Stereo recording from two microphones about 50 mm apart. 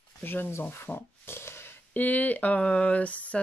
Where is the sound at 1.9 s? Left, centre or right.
Left.